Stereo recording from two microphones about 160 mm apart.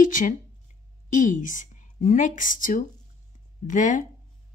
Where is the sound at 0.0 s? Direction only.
55° left (ahead or behind).